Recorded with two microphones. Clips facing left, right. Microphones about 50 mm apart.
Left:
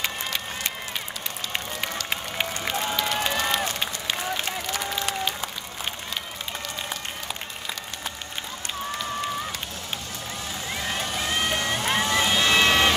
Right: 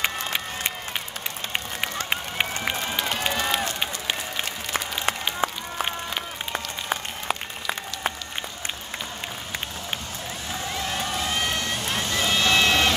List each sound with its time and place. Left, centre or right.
0.0 s run: right
2.0 s run: right
4.7 s applause: right
6.5 s applause: right
11.1 s vehicle: centre